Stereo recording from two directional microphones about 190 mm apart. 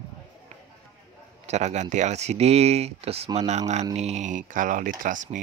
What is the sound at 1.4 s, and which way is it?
Speech, 35° right (ahead or behind).